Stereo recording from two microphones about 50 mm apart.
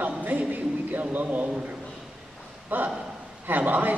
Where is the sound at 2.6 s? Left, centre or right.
Right.